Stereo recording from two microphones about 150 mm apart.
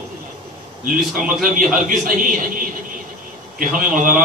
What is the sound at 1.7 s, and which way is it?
A man's voice, 65° right (ahead or behind).